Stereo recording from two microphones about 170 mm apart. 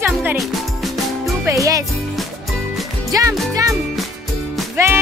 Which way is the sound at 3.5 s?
20° right (ahead or behind).